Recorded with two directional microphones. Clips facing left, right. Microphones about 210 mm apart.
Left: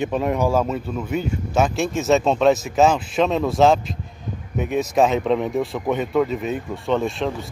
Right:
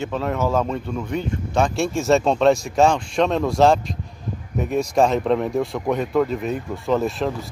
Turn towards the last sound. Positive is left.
turn(degrees=0)  # may be behind; listen again after turning